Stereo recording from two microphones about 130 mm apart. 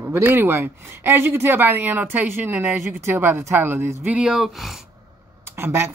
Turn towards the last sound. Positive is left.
turn(degrees=-20)  # may be behind; listen again after turning